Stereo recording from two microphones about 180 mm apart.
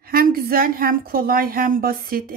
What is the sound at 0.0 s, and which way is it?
A woman's voice, 55° right (ahead or behind).